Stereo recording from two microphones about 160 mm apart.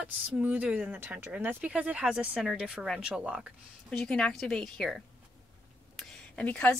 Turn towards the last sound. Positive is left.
turn(degrees=5)  # may be behind; listen again after turning